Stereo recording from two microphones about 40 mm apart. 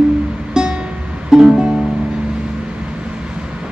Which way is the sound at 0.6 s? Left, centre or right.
Centre.